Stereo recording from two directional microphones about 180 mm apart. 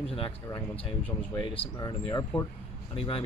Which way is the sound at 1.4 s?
30° left (ahead or behind).